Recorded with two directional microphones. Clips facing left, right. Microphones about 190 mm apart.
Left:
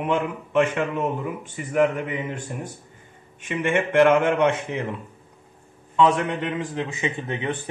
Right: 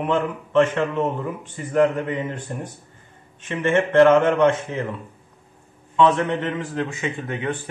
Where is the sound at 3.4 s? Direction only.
15° left (ahead or behind).